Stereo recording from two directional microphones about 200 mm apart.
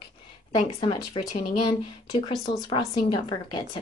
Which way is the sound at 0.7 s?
25° left (ahead or behind).